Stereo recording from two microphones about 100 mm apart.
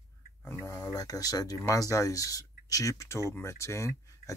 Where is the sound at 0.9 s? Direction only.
40° left (ahead or behind).